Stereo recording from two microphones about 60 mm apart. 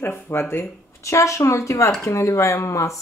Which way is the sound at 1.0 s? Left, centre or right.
Left.